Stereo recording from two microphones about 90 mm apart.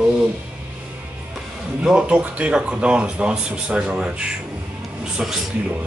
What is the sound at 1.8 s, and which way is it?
Speech, 15° right (ahead or behind).